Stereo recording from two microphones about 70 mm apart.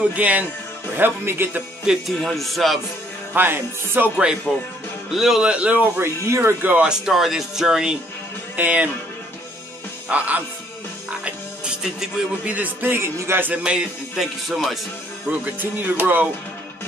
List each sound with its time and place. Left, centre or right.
0.0 s music: right
0.9 s music: right
2.1 s speech: centre
3.3 s music: right
4.5 s speech: centre
5.9 s music: right
6.6 s music: right
6.9 s speech: centre
8.5 s music: right
10.0 s music: right
11.2 s music: centre
12.5 s music: right
13.5 s speech: centre
15.4 s music: right